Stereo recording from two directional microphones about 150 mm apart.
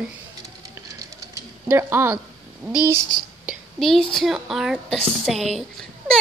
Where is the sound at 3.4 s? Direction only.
Centre (ahead or behind).